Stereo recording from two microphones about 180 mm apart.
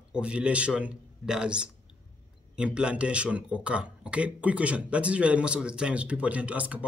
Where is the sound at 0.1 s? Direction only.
5° right (ahead or behind).